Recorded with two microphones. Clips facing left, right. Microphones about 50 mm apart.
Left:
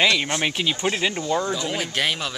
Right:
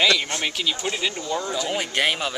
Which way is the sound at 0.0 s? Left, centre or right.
Left.